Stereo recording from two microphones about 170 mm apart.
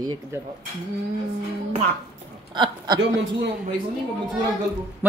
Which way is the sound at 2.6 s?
25° right (ahead or behind).